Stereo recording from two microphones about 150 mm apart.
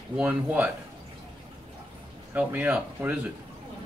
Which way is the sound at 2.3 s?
10° right (ahead or behind).